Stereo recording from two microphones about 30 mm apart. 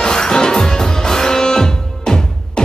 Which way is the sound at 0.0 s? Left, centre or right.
Left.